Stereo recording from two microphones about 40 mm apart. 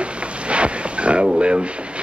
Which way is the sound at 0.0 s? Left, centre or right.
Right.